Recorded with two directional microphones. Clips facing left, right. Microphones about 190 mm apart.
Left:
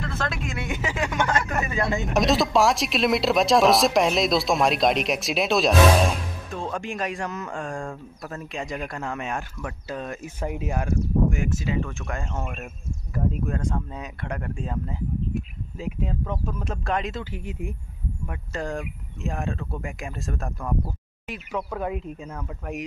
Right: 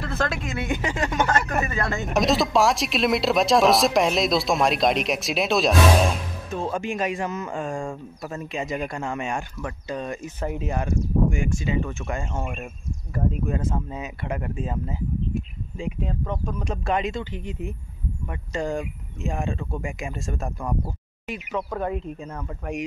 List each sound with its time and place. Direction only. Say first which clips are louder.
0.0 s speech: right 3 dB; centre (ahead or behind)
1.1 s speech: right 2 dB; 40° right (ahead or behind)
2.1 s speech: even; centre (ahead or behind)